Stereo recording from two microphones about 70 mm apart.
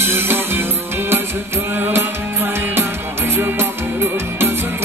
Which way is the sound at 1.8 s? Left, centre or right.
Right.